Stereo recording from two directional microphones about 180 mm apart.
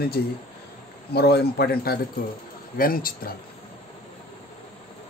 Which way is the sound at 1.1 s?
65° left (ahead or behind).